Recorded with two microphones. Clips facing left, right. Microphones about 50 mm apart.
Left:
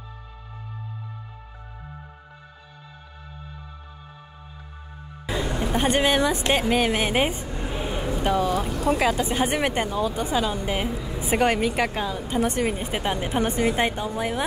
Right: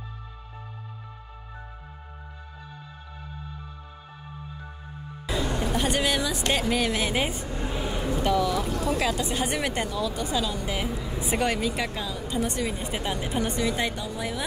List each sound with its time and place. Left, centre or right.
5.2 s music: centre
5.8 s a woman's voice: left
7.6 s a sound: centre
8.2 s speech: left
11.3 s a woman's voice: left